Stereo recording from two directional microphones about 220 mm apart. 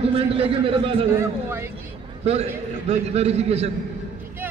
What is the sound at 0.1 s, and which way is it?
Speech, 25° right (ahead or behind).